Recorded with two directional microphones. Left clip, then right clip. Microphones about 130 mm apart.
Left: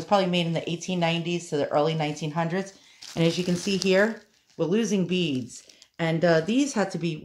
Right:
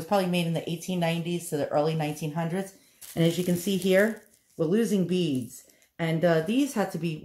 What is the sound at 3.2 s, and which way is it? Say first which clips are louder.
Speech: left 1 dB; 5° left (ahead or behind).